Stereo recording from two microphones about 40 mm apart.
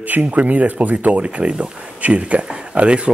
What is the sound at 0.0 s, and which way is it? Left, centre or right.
Speech, right.